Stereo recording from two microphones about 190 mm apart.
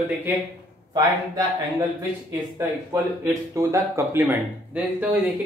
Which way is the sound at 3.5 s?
15° right (ahead or behind).